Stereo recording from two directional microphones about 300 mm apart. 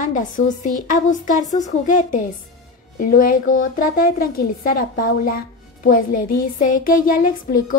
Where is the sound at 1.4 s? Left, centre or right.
Centre.